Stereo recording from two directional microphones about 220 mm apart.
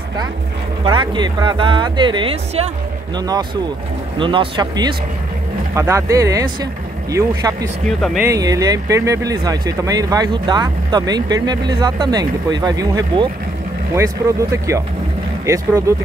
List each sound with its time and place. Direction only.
0.8 s speech: 20° right (ahead or behind)